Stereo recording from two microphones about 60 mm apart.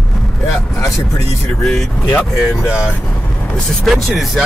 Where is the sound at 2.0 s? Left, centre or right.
Left.